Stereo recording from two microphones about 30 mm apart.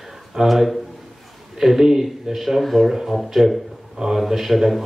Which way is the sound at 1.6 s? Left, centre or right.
Centre.